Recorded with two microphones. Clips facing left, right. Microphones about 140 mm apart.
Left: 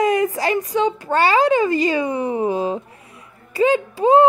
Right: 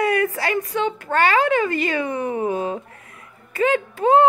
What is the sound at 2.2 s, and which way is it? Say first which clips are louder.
Speech: left 2 dB; 30° left (ahead or behind).